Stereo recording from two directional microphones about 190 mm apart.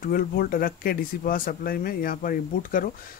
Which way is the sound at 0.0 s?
50° left (ahead or behind).